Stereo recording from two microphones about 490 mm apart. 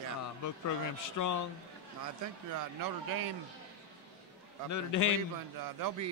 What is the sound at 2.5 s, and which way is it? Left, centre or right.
Speech, right.